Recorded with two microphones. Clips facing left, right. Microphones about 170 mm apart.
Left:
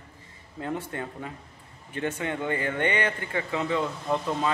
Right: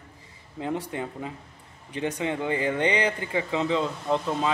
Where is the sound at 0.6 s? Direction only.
20° right (ahead or behind).